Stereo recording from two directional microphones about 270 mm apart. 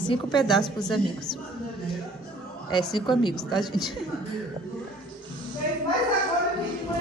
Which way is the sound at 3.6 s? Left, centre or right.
Centre.